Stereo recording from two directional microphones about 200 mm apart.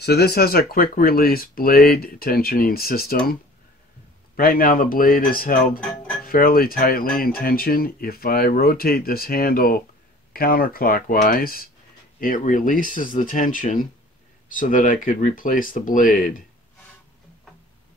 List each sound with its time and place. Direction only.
0.0 s speech: 55° left (ahead or behind)
4.4 s speech: 45° left (ahead or behind)
5.8 s music: 5° left (ahead or behind)
6.2 s speech: 45° left (ahead or behind)